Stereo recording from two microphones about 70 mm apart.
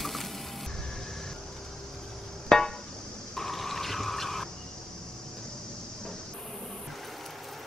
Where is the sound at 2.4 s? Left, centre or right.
Centre.